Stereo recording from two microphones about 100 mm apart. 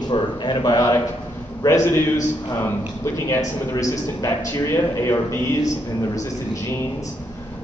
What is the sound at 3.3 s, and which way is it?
A man's voice, 35° left (ahead or behind).